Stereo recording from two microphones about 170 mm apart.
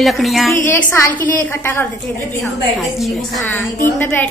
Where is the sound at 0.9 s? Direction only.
15° left (ahead or behind).